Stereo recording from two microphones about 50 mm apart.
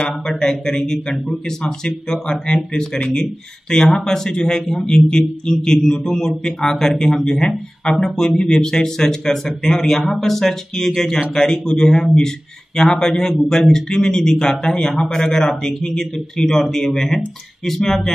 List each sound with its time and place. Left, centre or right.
0.4 s a man's voice: centre